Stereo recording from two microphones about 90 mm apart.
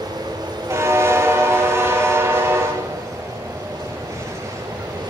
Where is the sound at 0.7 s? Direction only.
30° right (ahead or behind).